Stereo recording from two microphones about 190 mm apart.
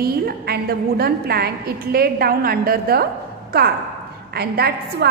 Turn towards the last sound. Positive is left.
turn(degrees=-55)  # may be behind; listen again after turning